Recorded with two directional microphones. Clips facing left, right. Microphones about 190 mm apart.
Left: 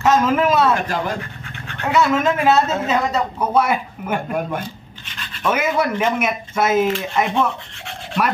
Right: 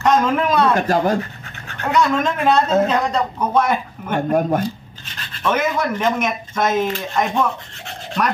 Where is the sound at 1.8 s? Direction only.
5° left (ahead or behind).